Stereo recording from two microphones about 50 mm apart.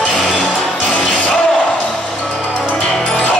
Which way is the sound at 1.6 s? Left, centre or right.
Left.